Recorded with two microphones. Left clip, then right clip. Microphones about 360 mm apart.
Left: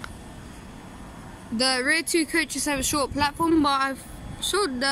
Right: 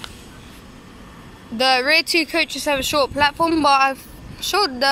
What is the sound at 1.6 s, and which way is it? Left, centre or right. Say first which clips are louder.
Speech: right 7 dB; centre.